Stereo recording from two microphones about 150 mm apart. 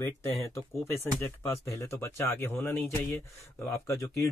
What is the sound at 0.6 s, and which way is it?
Speech, 20° left (ahead or behind).